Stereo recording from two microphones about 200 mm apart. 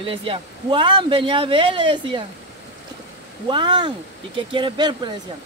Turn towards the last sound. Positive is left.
turn(degrees=-25)  # may be behind; listen again after turning